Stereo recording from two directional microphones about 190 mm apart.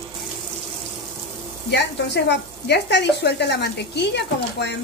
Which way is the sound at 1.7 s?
65° left (ahead or behind).